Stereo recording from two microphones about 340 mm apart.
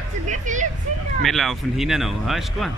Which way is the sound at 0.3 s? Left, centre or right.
Right.